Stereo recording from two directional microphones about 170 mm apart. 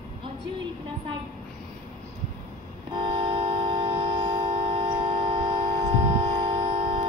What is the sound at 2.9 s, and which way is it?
Train, 30° right (ahead or behind).